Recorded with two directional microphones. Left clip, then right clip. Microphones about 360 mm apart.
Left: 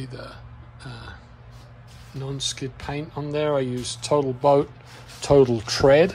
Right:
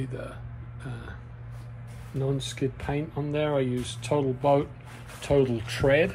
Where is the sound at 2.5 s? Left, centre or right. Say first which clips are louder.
Right 1 dB; centre.